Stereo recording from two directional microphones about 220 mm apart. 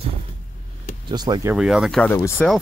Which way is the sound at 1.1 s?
20° right (ahead or behind).